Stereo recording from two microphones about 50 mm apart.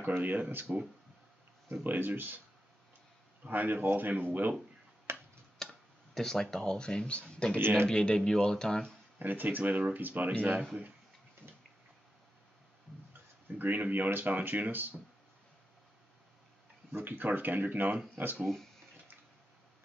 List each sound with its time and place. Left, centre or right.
0.2 s speech: right
3.4 s speech: right
5.1 s tick-tock: right
5.6 s tick-tock: centre
6.1 s speech: centre
7.5 s speech: right
7.9 s speech: centre
9.2 s speech: right
13.6 s speech: right
16.9 s speech: right